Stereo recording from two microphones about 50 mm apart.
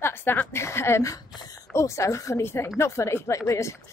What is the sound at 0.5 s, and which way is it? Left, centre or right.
Speech, left.